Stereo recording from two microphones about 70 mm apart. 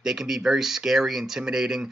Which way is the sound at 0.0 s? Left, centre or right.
Centre.